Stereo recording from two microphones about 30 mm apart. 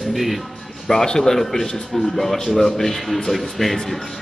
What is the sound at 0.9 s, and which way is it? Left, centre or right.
Speech, centre.